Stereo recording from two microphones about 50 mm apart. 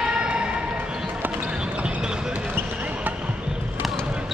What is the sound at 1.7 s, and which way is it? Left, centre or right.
Basketball bounce, centre.